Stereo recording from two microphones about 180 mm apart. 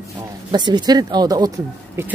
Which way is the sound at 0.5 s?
25° right (ahead or behind).